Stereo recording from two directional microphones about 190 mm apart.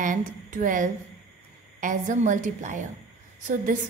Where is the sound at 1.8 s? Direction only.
45° right (ahead or behind).